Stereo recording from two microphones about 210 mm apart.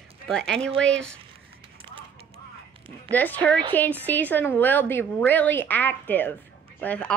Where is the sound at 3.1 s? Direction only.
10° left (ahead or behind).